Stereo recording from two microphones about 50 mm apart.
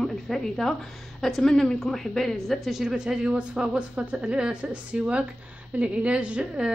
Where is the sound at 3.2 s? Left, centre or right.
Right.